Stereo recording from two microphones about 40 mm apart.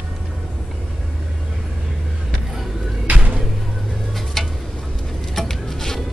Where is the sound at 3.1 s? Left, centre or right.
Right.